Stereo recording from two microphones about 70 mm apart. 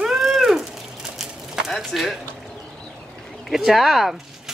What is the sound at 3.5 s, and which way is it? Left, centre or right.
Speech, centre.